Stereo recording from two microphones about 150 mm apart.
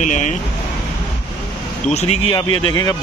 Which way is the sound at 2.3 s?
30° left (ahead or behind).